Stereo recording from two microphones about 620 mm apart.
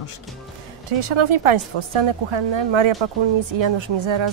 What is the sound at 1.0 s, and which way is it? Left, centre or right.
Speech, right.